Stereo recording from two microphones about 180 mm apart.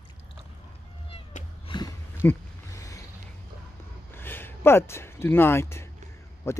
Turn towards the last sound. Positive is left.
turn(degrees=15)  # may be behind; listen again after turning